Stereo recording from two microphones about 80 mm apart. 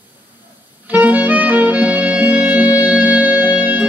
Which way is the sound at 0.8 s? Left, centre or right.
Centre.